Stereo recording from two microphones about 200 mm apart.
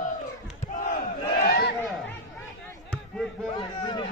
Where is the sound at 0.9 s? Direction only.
45° left (ahead or behind).